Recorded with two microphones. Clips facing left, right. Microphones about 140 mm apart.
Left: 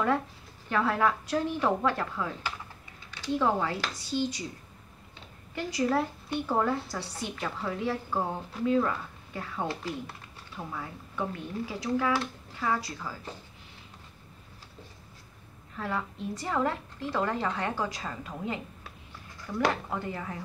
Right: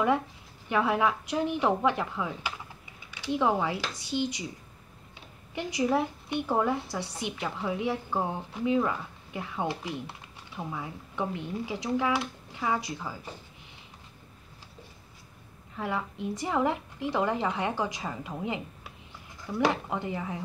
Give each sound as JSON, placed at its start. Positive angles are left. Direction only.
{"t": 0.7, "sound": "a woman's voice", "side_deg": -15}
{"t": 5.5, "sound": "a woman's voice", "side_deg": -15}
{"t": 15.7, "sound": "a woman's voice", "side_deg": -15}